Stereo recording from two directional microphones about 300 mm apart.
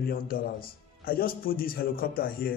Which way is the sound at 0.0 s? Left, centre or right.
Left.